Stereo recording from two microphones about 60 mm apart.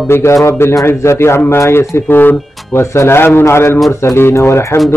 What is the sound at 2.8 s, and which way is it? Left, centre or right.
Speech, left.